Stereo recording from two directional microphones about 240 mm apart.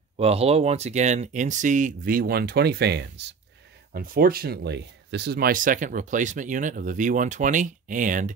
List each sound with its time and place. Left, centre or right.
0.2 s speech: right